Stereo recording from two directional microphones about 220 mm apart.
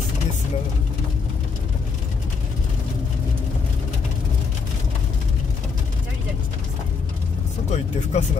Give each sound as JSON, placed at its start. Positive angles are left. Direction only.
{"t": 7.7, "sound": "music", "side_deg": 30}